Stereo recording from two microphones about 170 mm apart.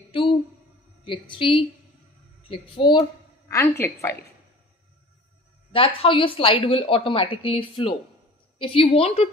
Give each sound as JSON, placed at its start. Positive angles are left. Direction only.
{"t": 0.1, "sound": "a sound", "side_deg": 30}
{"t": 1.0, "sound": "a woman's voice", "side_deg": 30}
{"t": 5.7, "sound": "speech", "side_deg": 30}